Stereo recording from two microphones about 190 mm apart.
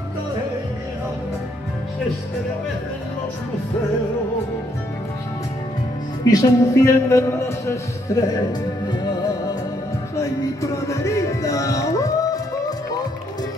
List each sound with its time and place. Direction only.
6.2 s speech: 20° left (ahead or behind)
10.1 s music: 15° left (ahead or behind)